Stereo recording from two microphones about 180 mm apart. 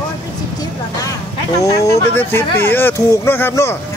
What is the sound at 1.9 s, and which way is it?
Speech, 15° left (ahead or behind).